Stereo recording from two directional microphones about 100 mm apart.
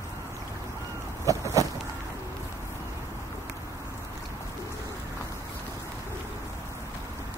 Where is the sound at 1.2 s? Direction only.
35° right (ahead or behind).